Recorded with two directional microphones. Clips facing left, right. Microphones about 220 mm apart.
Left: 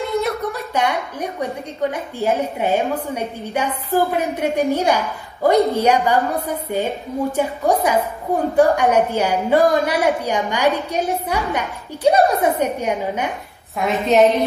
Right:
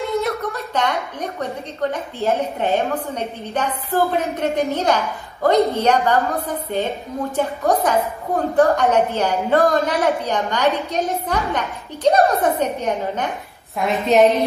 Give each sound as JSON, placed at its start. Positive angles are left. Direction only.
{"t": 0.2, "sound": "a woman's voice", "side_deg": 15}